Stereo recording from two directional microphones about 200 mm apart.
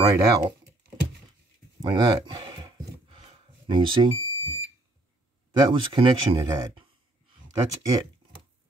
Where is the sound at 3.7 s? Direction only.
25° right (ahead or behind).